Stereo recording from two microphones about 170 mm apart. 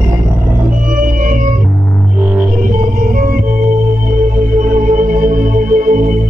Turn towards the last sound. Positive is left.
turn(degrees=-55)  # may be behind; listen again after turning